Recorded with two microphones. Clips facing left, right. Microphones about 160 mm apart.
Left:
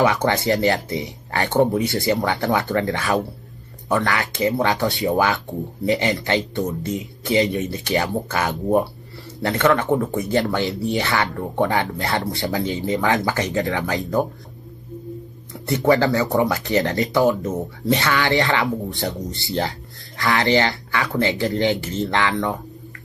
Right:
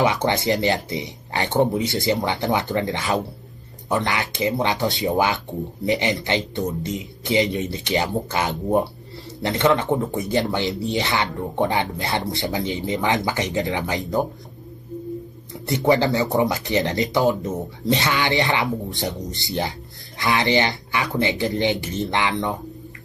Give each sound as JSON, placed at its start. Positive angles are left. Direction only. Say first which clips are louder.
{"t": 0.0, "sound": "speech", "louder": "left 2 dB", "side_deg": -20}
{"t": 15.6, "sound": "speech", "louder": "left 1 dB", "side_deg": -20}